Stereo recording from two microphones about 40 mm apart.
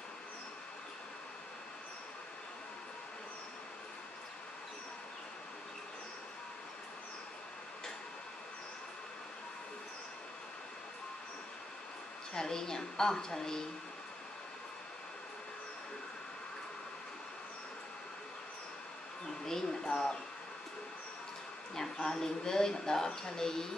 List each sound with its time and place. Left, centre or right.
12.4 s speech: centre
19.4 s a sound: centre
22.1 s speech: centre